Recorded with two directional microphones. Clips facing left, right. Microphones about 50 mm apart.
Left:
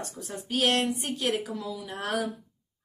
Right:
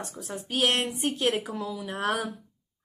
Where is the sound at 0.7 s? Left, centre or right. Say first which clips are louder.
Even; right.